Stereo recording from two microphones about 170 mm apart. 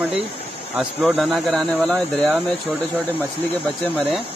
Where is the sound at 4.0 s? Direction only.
Centre (ahead or behind).